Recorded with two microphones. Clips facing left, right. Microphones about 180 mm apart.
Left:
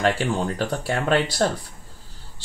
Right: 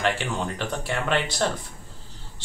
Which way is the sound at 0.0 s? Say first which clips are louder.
Left 4 dB; 35° left (ahead or behind).